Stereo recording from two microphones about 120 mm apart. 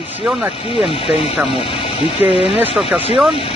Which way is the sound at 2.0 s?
60° left (ahead or behind).